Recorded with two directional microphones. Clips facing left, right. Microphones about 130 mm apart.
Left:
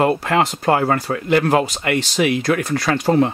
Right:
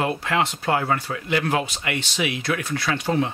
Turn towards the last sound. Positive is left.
turn(degrees=40)  # may be behind; listen again after turning